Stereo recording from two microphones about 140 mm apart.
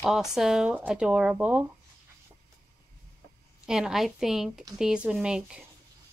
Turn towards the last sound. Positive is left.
turn(degrees=-5)  # may be behind; listen again after turning